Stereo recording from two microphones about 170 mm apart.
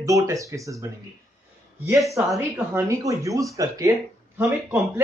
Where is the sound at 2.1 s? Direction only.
15° right (ahead or behind).